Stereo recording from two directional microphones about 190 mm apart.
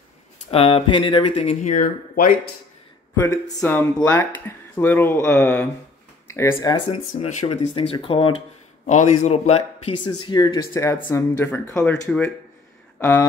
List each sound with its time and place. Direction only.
0.5 s speech: 30° left (ahead or behind); by 2.3 s 45° left (ahead or behind)
3.2 s speech: 20° left (ahead or behind)
6.9 s speech: 35° left (ahead or behind); by 13.3 s 10° left (ahead or behind)